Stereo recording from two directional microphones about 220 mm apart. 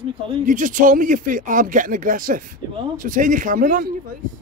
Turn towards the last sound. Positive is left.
turn(degrees=-40)  # may be behind; listen again after turning